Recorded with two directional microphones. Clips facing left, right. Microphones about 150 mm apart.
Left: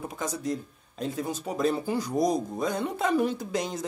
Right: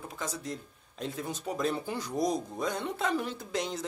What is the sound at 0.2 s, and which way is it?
Speech, 10° left (ahead or behind).